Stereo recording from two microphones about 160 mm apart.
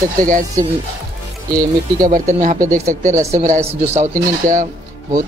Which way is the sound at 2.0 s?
55° right (ahead or behind).